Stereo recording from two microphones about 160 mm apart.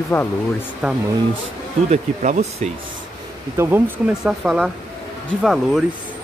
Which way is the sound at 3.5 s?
15° right (ahead or behind).